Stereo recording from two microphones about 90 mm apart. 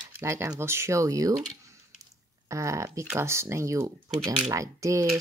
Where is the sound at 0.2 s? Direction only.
30° right (ahead or behind).